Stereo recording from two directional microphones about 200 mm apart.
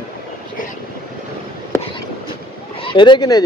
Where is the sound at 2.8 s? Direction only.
25° left (ahead or behind).